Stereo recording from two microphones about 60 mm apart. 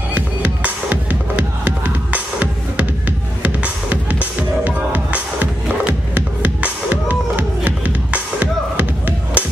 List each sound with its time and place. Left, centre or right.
0.1 s music: right